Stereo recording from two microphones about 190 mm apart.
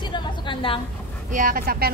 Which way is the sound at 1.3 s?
45° right (ahead or behind).